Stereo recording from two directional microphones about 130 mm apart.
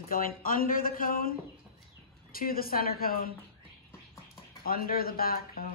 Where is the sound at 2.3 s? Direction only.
90° left.